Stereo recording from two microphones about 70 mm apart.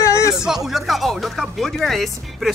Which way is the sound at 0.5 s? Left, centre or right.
Centre.